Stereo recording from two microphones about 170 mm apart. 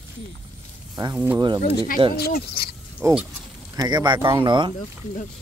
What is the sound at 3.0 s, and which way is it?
Speech, 20° right (ahead or behind).